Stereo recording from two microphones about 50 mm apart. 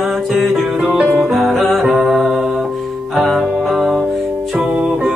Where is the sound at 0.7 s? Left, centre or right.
Centre.